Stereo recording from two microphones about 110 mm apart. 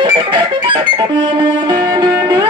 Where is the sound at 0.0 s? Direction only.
45° right (ahead or behind).